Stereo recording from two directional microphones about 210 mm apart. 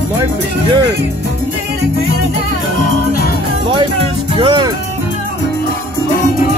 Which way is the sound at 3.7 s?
25° right (ahead or behind).